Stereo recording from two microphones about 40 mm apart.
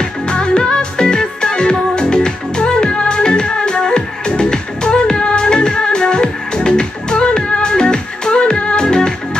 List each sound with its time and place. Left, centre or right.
0.0 s music: left